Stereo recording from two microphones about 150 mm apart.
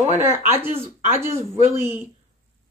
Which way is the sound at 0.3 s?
15° right (ahead or behind).